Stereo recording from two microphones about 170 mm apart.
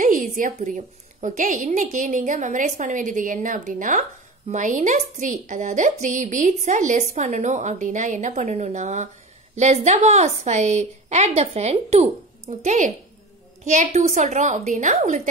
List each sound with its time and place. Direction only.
0.0 s a woman's voice: 50° right (ahead or behind)